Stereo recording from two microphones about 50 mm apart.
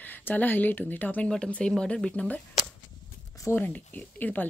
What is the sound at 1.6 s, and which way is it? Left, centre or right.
Speech, centre.